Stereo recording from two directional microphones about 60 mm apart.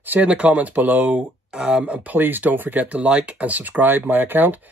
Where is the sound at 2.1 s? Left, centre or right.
Right.